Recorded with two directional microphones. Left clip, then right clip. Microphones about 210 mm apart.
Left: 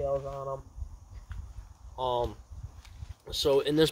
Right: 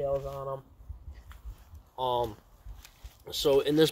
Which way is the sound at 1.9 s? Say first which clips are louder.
Right 1 dB; 25° right (ahead or behind).